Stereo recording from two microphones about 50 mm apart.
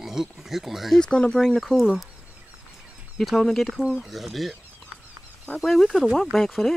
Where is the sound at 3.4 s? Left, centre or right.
Centre.